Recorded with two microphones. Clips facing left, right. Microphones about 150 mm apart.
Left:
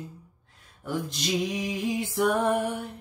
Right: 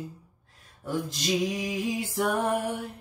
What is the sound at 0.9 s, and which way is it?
Music, centre (ahead or behind).